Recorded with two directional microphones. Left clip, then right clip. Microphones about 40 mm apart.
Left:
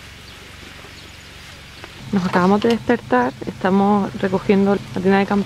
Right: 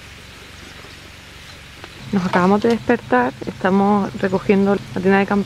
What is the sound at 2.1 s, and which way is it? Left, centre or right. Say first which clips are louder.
Speech: even; right.